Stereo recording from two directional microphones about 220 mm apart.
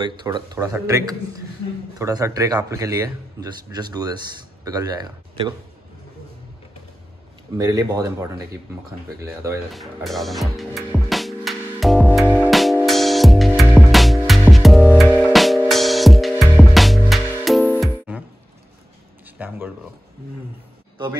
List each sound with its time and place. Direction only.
0.2 s speech: 20° right (ahead or behind)
7.5 s speech: 15° right (ahead or behind)
9.7 s music: centre (ahead or behind)
19.3 s a sound: 5° right (ahead or behind)